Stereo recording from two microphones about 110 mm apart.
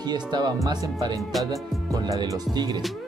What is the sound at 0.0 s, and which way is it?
Speech, 40° right (ahead or behind).